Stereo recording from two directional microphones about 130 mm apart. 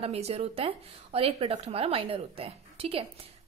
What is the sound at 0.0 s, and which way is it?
A woman's voice, 55° right (ahead or behind).